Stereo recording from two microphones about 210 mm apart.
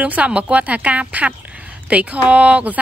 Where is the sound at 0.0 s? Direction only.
5° right (ahead or behind).